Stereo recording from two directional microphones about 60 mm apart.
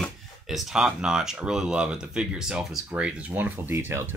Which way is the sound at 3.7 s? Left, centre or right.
Right.